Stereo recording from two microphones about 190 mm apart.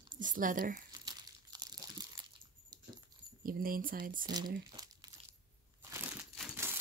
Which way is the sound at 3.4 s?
50° right (ahead or behind).